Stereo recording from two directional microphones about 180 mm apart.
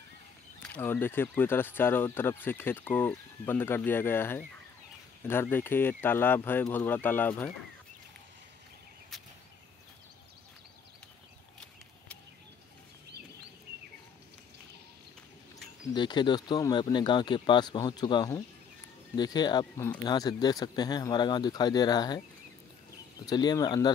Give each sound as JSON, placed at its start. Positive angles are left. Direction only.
{"t": 0.6, "sound": "speech", "side_deg": 10}
{"t": 9.1, "sound": "a sound", "side_deg": 0}
{"t": 15.9, "sound": "speech", "side_deg": 25}
{"t": 23.2, "sound": "speech", "side_deg": 20}